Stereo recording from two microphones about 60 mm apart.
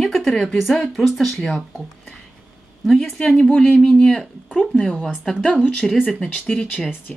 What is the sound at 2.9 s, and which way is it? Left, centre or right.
Speech, centre.